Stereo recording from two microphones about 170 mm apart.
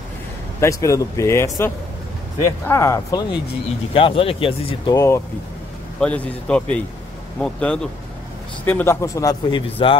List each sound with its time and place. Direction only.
0.6 s a man's voice: 20° left (ahead or behind)
3.9 s speech: 35° left (ahead or behind)
4.9 s a man's voice: 15° left (ahead or behind)